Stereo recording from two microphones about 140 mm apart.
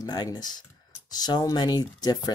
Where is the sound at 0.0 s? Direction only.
30° left (ahead or behind).